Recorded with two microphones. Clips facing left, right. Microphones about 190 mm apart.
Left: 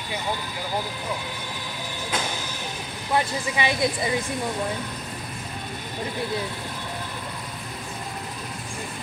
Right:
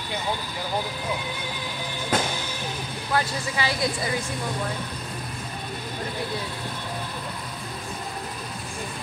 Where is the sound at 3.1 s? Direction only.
20° left (ahead or behind).